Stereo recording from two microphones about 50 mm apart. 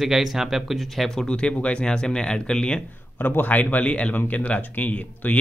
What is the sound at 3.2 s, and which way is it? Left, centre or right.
Speech, left.